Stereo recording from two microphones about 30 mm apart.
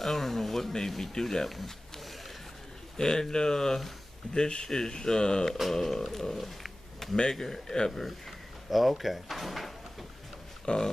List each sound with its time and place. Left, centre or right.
0.0 s speech: centre
3.0 s speech: left
5.7 s speech: centre
6.1 s a sound: centre
7.3 s speech: centre
8.6 s speech: centre
10.6 s speech: left